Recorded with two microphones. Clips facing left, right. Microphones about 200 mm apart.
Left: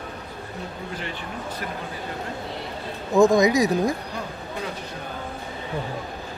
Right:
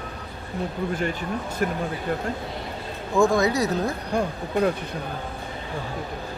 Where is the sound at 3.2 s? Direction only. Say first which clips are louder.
Left 3 dB; 20° left (ahead or behind).